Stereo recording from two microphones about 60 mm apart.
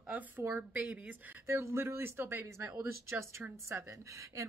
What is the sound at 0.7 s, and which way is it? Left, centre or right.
Speech, right.